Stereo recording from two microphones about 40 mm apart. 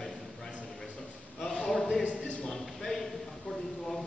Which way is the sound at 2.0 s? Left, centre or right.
Left.